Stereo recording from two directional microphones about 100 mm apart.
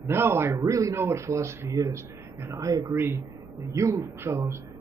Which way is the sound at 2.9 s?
25° right (ahead or behind).